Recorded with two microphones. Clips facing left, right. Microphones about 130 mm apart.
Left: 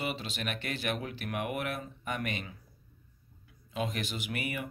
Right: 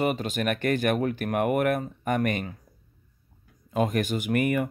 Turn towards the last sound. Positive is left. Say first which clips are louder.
# right 12 dB
turn(degrees=-50)  # may be behind; listen again after turning